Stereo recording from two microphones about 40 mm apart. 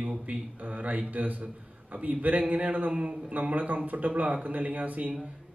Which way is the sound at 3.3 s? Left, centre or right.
Right.